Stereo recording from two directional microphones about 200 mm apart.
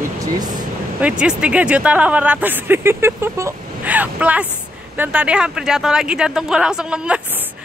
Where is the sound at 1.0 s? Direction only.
5° right (ahead or behind).